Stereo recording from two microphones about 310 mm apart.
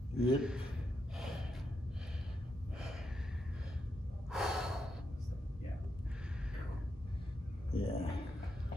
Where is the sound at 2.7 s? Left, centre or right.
Centre.